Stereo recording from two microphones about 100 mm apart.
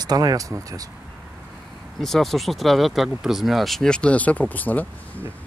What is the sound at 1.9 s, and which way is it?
Speech, centre (ahead or behind).